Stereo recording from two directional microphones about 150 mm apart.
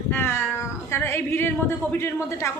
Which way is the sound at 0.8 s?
15° left (ahead or behind).